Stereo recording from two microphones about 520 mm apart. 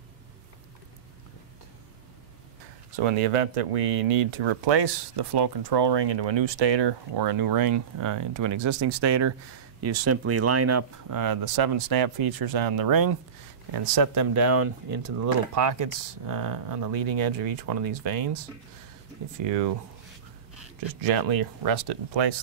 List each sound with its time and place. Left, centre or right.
3.0 s speech: right
21.1 s speech: right